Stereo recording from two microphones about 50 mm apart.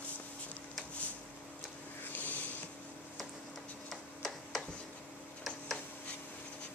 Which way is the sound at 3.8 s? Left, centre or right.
Centre.